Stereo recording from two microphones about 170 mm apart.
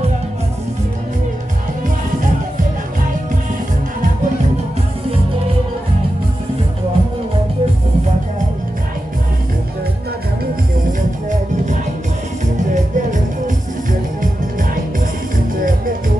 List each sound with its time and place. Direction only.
10.9 s music: 45° right (ahead or behind)